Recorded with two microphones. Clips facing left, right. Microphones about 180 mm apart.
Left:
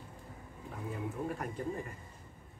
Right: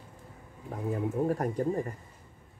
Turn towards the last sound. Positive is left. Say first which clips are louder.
# right 9 dB
turn(degrees=-40)  # may be behind; listen again after turning